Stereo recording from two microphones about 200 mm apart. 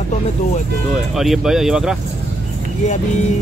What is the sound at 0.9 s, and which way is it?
Speech, centre (ahead or behind).